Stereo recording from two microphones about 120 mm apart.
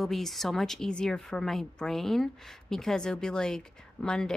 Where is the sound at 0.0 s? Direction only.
Centre (ahead or behind).